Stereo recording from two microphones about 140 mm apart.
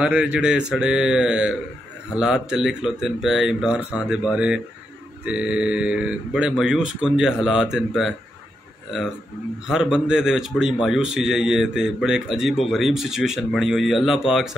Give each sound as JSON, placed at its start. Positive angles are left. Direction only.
{"t": 0.0, "sound": "a man's voice", "side_deg": -5}
{"t": 9.7, "sound": "a man's voice", "side_deg": -5}